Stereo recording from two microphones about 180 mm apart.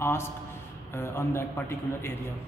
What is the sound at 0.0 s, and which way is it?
A man's voice, 15° left (ahead or behind).